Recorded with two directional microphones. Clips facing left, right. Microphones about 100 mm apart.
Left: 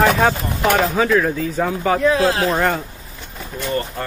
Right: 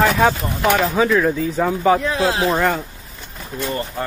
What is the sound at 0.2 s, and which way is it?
Speech, 10° left (ahead or behind).